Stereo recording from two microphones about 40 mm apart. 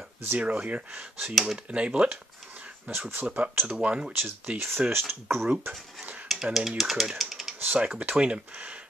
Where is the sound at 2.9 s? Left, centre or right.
Right.